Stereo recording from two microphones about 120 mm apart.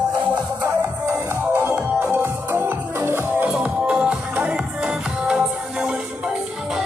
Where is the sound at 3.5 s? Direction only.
5° right (ahead or behind).